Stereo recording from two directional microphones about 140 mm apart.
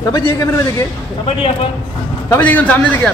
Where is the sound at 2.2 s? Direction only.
10° left (ahead or behind).